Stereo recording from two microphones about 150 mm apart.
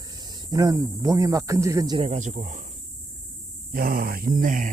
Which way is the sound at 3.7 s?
75° right (ahead or behind).